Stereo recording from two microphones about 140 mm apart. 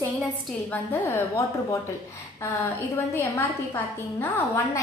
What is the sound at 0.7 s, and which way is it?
A woman's voice, 20° left (ahead or behind).